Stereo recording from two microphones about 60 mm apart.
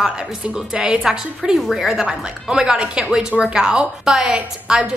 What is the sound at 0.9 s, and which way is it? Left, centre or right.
A woman's voice, centre.